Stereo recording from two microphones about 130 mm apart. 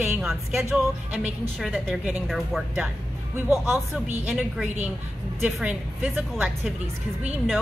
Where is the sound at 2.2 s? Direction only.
Centre (ahead or behind).